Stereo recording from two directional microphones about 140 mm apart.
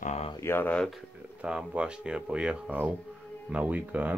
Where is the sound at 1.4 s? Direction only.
5° right (ahead or behind).